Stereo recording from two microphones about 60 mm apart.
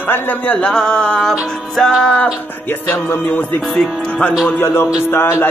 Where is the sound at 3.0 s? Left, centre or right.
Left.